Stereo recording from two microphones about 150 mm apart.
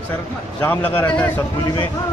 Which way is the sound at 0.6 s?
15° left (ahead or behind).